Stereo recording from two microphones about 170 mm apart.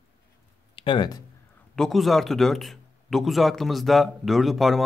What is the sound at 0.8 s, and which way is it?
Speech, 30° left (ahead or behind).